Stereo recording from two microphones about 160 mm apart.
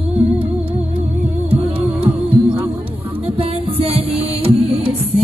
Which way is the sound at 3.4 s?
35° right (ahead or behind).